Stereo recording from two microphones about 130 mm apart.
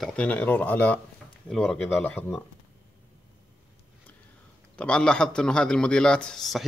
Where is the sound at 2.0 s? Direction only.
15° left (ahead or behind).